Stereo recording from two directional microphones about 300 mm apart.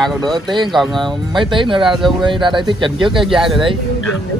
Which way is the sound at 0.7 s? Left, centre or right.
Centre.